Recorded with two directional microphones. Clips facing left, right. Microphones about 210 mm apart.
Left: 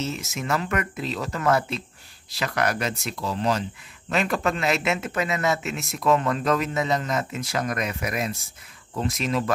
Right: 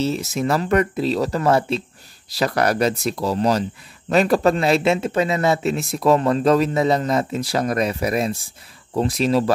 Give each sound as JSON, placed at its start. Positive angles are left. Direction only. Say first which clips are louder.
{"t": 0.0, "sound": "speech", "louder": "right 8 dB", "side_deg": -35}